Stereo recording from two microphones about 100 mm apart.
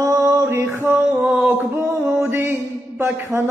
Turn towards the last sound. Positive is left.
turn(degrees=-25)  # may be behind; listen again after turning